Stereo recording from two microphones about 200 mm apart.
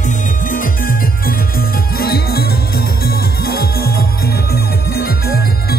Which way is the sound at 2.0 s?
50° left (ahead or behind).